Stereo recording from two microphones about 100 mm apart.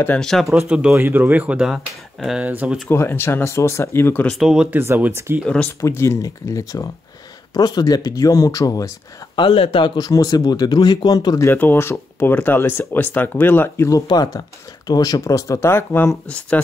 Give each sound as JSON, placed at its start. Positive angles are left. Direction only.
{"t": 0.2, "sound": "speech", "side_deg": 0}
{"t": 1.7, "sound": "speech", "side_deg": 0}
{"t": 2.4, "sound": "speech", "side_deg": -15}
{"t": 2.9, "sound": "speech", "side_deg": 20}
{"t": 4.3, "sound": "speech", "side_deg": -5}
{"t": 4.6, "sound": "speech", "side_deg": -20}
{"t": 5.4, "sound": "speech", "side_deg": 10}
{"t": 5.8, "sound": "speech", "side_deg": 30}
{"t": 9.5, "sound": "speech", "side_deg": 70}
{"t": 11.5, "sound": "speech", "side_deg": 20}
{"t": 14.0, "sound": "speech", "side_deg": 40}
{"t": 16.3, "sound": "speech", "side_deg": 10}